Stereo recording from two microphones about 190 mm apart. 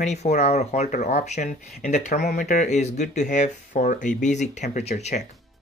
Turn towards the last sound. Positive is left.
turn(degrees=35)  # may be behind; listen again after turning